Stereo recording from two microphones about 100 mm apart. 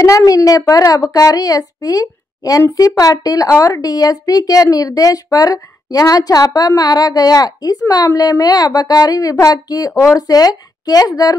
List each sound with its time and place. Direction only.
0.0 s a woman's voice: 35° left (ahead or behind)